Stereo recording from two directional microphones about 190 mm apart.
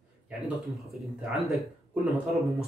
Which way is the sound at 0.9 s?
Centre (ahead or behind).